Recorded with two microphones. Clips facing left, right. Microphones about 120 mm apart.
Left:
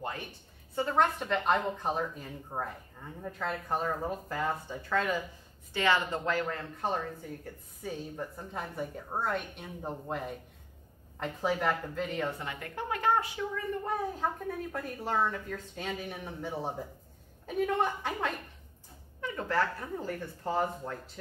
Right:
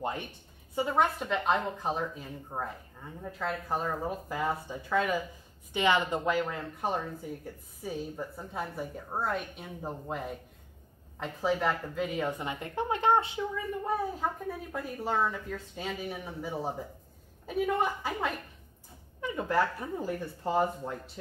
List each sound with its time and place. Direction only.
0.7 s a woman's voice: 10° right (ahead or behind)
14.2 s a woman's voice: 5° right (ahead or behind)